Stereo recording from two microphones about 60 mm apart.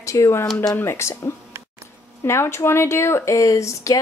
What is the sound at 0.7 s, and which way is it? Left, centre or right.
Speech, left.